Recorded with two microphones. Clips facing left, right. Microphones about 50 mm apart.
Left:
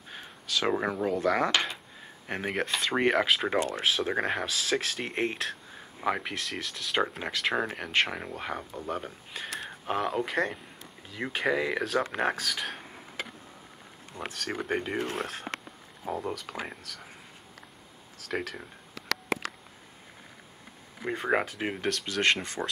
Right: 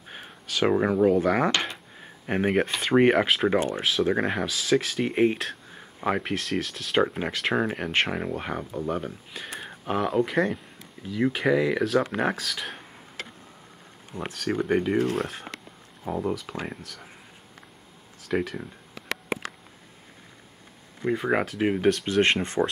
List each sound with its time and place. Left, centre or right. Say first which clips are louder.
0.2 s speech: right 5 dB; centre
1.5 s a sound: right 1 dB; centre
2.0 s speech: right 11 dB; centre
18.3 s speech: right 6 dB; centre
21.0 s speech: right 3 dB; centre
22.0 s speech: right 4 dB; right